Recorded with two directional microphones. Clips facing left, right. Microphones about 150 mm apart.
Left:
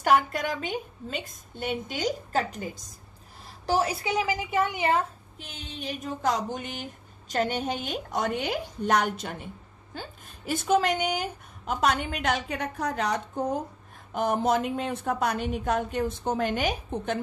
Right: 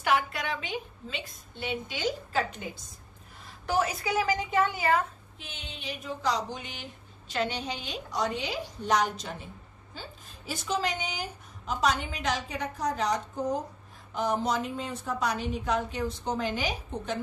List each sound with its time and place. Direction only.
0.0 s a woman's voice: 45° left (ahead or behind); by 5.0 s 25° left (ahead or behind)
5.4 s a woman's voice: 40° left (ahead or behind); by 17.2 s 55° left (ahead or behind)